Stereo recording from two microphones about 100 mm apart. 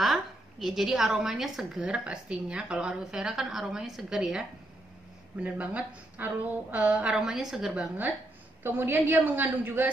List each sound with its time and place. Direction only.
0.0 s a woman's voice: centre (ahead or behind)
8.6 s a woman's voice: 20° right (ahead or behind)